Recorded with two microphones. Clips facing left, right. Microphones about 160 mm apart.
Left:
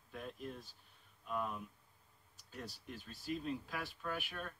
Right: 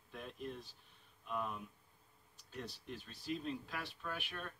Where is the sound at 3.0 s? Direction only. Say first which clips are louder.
Left 1 dB; 45° left (ahead or behind).